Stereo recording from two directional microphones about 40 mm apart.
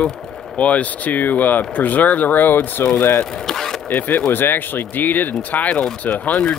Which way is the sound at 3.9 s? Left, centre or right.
Left.